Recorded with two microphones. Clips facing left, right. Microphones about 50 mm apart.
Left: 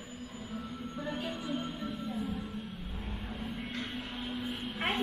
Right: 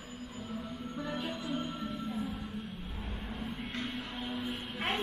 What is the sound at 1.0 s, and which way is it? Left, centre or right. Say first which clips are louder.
Music: even; centre.